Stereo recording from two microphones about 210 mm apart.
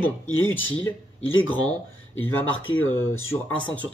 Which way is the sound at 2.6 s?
70° left (ahead or behind).